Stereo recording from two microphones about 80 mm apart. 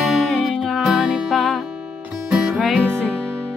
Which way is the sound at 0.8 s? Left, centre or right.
Centre.